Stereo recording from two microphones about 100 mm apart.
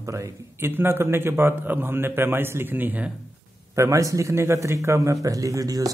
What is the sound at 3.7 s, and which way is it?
Speech, 30° right (ahead or behind).